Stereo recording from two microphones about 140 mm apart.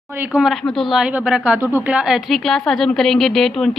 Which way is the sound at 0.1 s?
15° right (ahead or behind).